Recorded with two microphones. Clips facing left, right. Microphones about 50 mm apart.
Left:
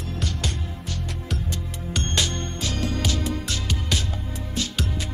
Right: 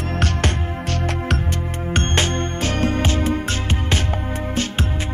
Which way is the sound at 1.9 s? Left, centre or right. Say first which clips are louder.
Right 5 dB; right.